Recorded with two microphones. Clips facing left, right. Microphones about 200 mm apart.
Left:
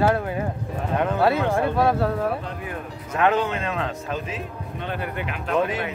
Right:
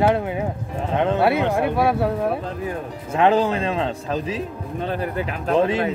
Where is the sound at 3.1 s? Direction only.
30° right (ahead or behind).